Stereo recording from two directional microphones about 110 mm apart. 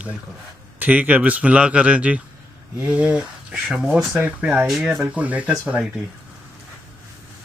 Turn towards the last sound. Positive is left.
turn(degrees=-10)  # may be behind; listen again after turning